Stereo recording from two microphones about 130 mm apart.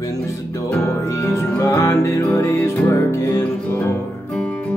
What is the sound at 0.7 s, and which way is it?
Music, 20° left (ahead or behind).